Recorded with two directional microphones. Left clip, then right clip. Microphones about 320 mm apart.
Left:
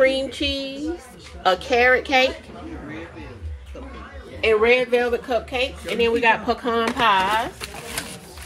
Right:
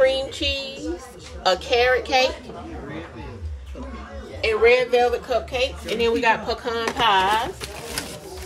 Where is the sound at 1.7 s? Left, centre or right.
Centre.